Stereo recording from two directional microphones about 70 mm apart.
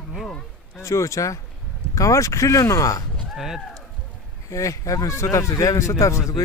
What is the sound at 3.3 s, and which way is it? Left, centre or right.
Speech, centre.